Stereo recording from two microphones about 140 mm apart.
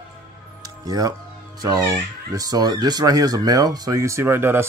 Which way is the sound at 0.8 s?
25° right (ahead or behind).